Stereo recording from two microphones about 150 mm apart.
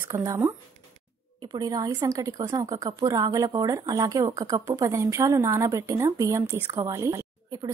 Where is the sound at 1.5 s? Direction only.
25° right (ahead or behind).